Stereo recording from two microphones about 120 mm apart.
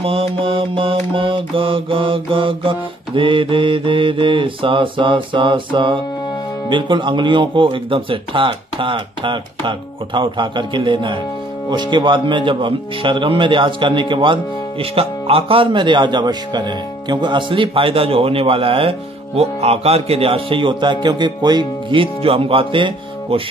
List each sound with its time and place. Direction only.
0.0 s speech: 50° right (ahead or behind)